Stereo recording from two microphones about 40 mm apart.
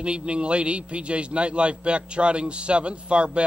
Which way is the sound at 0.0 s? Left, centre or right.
Right.